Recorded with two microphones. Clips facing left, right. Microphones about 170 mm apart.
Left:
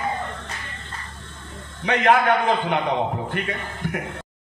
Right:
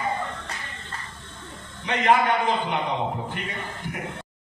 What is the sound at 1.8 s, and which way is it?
A man's voice, 55° left (ahead or behind).